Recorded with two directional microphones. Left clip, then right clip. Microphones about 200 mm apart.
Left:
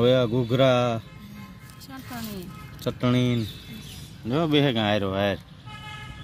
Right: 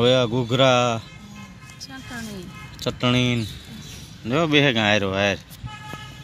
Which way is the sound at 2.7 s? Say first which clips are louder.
Right 4 dB; centre (ahead or behind).